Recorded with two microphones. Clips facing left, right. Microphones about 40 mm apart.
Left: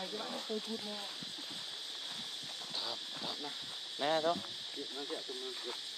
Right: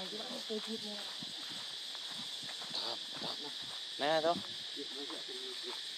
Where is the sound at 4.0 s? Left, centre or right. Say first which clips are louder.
Right 1 dB; centre.